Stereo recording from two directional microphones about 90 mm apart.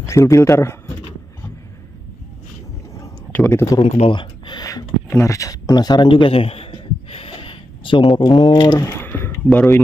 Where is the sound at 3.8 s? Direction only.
65° left (ahead or behind).